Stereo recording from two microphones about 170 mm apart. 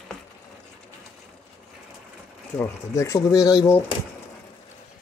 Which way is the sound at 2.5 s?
15° left (ahead or behind).